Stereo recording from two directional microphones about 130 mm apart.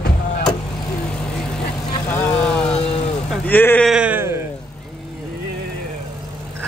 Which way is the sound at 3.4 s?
15° left (ahead or behind).